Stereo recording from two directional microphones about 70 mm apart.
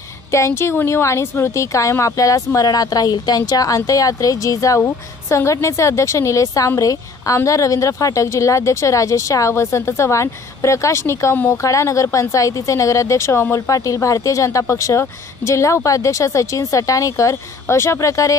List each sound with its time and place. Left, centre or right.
0.3 s a woman's voice: left